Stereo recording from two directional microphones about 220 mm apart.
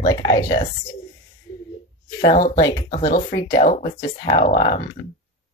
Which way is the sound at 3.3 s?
25° left (ahead or behind).